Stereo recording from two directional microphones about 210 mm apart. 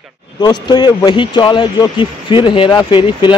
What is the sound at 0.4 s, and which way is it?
Speech, 20° left (ahead or behind).